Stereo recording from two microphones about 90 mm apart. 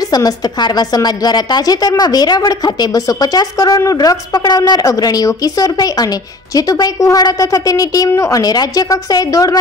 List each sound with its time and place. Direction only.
0.1 s a woman's voice: 50° left (ahead or behind)